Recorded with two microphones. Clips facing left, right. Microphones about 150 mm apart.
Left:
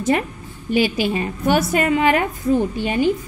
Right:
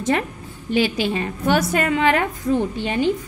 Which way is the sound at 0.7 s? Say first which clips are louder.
Left 1 dB; 10° left (ahead or behind).